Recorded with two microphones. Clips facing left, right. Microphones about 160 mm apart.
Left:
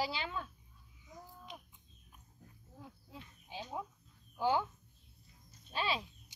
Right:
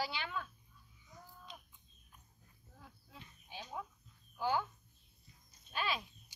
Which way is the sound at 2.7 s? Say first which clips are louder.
Left 5 dB; 20° left (ahead or behind).